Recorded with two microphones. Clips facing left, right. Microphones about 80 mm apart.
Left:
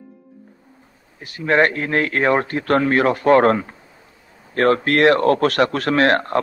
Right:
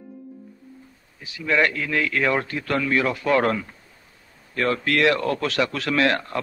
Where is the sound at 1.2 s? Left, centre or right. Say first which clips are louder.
Left 5 dB; left.